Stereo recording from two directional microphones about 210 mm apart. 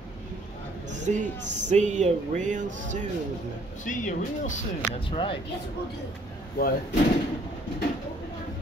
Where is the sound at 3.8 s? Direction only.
35° left (ahead or behind).